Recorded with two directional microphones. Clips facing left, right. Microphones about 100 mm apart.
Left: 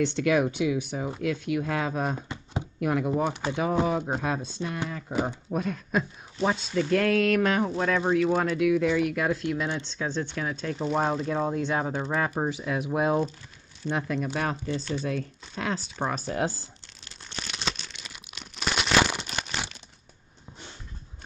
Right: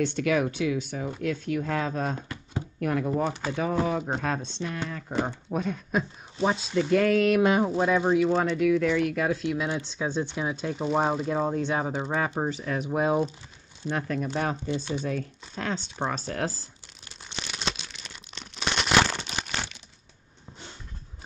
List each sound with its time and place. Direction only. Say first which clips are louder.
0.0 s speech: left 1 dB; 15° left (ahead or behind)
2.2 s speech: left 1 dB; 20° left (ahead or behind); by 7.3 s centre (ahead or behind)
7.3 s speech: right 2 dB; 20° right (ahead or behind)
12.4 s speech: even; 5° left (ahead or behind)
17.2 s crumpling: even; 5° right (ahead or behind)